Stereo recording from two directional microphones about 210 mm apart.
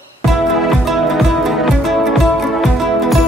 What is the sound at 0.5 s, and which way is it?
Music, centre (ahead or behind).